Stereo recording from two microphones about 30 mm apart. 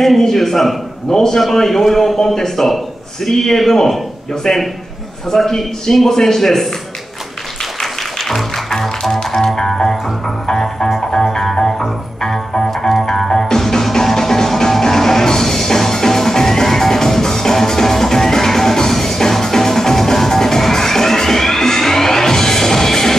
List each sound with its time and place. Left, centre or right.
0.2 s a man's voice: centre
1.1 s a man's voice: centre
1.5 s a man's voice: centre
4.4 s a man's voice: left
5.3 s a man's voice: centre
7.8 s music: centre
12.6 s music: centre